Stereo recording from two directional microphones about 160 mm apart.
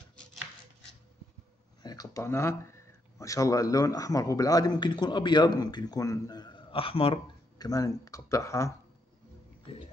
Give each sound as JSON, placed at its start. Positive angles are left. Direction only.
{"t": 1.8, "sound": "speech", "side_deg": 25}
{"t": 7.5, "sound": "speech", "side_deg": 20}